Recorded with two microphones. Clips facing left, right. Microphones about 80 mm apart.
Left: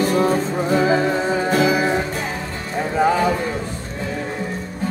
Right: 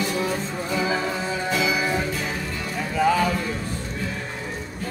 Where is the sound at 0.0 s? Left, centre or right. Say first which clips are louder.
Left 8 dB; left.